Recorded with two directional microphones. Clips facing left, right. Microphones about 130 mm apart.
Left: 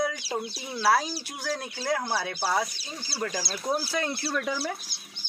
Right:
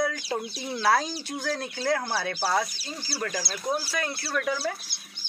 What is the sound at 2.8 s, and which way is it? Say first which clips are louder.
Speech: even; 20° left (ahead or behind).